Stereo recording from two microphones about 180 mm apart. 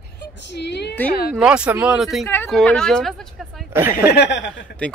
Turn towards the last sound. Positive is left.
turn(degrees=85)